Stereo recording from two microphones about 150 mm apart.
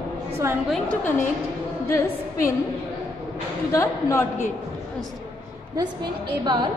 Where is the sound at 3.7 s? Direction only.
20° left (ahead or behind).